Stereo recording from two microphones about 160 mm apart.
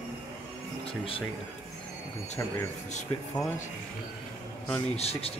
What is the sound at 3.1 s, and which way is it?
Speech, 25° left (ahead or behind).